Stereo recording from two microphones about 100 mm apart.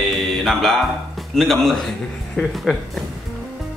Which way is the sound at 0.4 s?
Centre (ahead or behind).